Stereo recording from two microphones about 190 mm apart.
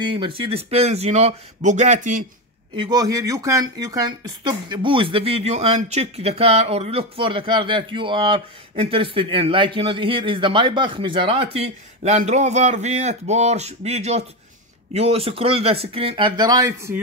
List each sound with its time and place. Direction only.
0.0 s speech: 25° right (ahead or behind); by 2.2 s 40° right (ahead or behind)
2.7 s speech: 25° right (ahead or behind)